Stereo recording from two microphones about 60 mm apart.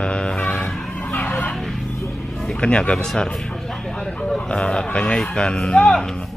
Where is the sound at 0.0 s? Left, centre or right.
Centre.